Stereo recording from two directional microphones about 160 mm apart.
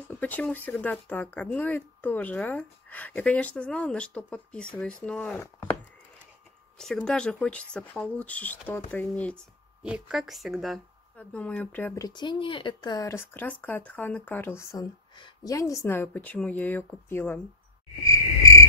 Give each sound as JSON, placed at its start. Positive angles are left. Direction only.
{"t": 0.1, "sound": "speech", "side_deg": 10}
{"t": 5.4, "sound": "a sound", "side_deg": 10}
{"t": 6.8, "sound": "speech", "side_deg": 5}
{"t": 9.8, "sound": "speech", "side_deg": -5}
{"t": 18.0, "sound": "insect", "side_deg": 20}